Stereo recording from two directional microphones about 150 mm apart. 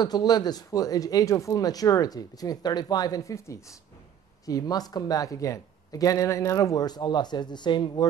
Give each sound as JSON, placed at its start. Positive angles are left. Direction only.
{"t": 0.0, "sound": "speech", "side_deg": 25}